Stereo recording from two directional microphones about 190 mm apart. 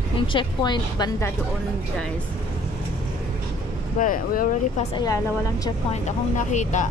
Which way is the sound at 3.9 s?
45° left (ahead or behind).